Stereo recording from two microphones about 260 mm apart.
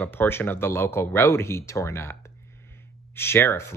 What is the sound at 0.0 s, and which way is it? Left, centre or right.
Speech, centre.